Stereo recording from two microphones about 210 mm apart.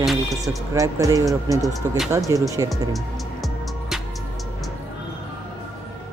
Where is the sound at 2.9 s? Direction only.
Centre (ahead or behind).